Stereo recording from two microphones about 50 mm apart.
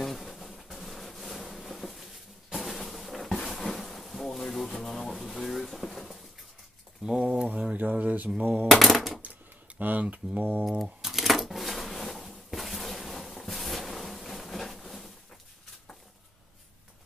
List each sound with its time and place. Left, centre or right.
0.0 s bee: centre
7.1 s a sound: centre
8.0 s mantra: right
8.4 s speech: right
8.6 s speech: centre
9.8 s speech: right
10.8 s a sound: centre